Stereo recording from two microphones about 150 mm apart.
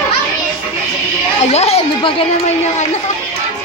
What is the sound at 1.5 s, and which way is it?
Chatter, 45° left (ahead or behind).